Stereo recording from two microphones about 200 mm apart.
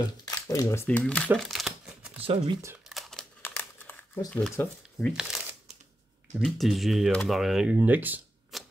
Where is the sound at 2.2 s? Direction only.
25° right (ahead or behind).